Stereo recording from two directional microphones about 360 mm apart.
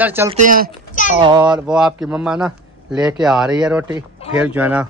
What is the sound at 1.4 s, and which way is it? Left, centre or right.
Speech, centre.